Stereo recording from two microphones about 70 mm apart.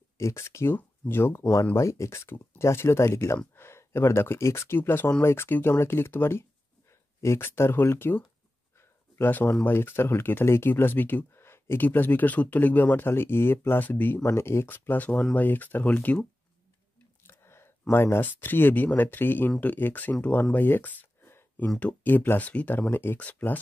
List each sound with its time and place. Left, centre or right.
0.2 s speech: left
8.7 s a sound: left
9.7 s speech: left
14.3 s speech: left
17.2 s whispering: left
18.2 s speech: left
20.5 s a sound: left
21.7 s speech: left